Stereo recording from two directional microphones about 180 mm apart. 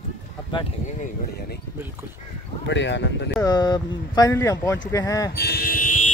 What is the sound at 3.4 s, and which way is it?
Speech, 20° left (ahead or behind).